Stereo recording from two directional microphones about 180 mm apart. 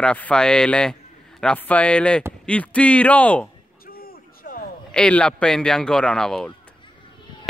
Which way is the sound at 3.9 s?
55° left (ahead or behind).